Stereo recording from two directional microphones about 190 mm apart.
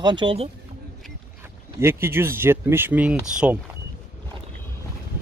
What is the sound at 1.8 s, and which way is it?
Speech, 15° right (ahead or behind).